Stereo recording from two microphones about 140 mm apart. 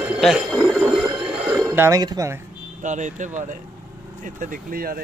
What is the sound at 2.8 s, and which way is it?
Speech, 60° right (ahead or behind).